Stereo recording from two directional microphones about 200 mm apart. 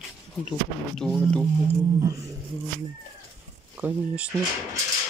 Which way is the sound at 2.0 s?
15° right (ahead or behind).